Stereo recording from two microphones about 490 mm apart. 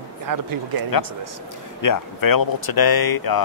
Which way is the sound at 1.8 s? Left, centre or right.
Left.